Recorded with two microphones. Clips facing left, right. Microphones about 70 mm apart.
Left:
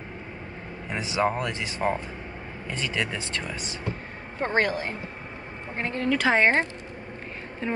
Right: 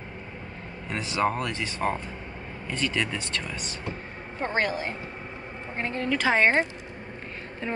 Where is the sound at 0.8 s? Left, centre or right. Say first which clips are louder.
Left 1 dB; centre.